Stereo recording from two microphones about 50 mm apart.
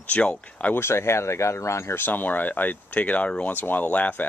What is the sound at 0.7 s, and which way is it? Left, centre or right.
Speech, left.